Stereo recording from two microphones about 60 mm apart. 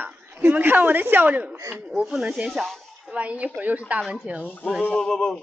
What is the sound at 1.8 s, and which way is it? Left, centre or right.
Speech, centre.